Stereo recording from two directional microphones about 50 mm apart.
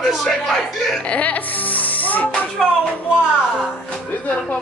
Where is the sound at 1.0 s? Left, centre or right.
Left.